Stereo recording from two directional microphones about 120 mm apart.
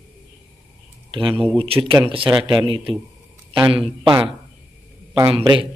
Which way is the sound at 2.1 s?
45° right (ahead or behind).